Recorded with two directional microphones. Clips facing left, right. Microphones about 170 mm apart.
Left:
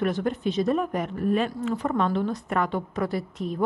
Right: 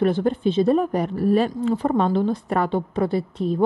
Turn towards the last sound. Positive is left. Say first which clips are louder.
# right 6 dB
turn(degrees=-30)  # may be behind; listen again after turning